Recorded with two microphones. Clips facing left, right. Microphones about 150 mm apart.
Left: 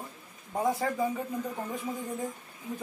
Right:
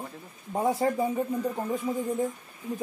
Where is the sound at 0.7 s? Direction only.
30° right (ahead or behind).